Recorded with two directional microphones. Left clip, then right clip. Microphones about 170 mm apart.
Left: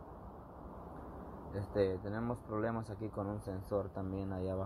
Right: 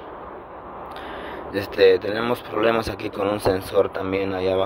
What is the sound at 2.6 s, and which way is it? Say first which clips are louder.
Speech: right 19 dB; 65° right (ahead or behind).